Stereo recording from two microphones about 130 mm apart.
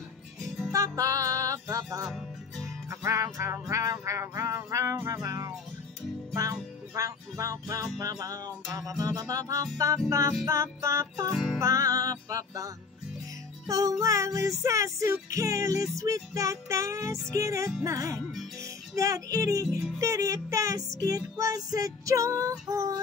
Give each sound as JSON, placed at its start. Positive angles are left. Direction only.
{"t": 0.7, "sound": "music", "side_deg": -25}
{"t": 2.0, "sound": "music", "side_deg": 0}
{"t": 2.9, "sound": "music", "side_deg": -25}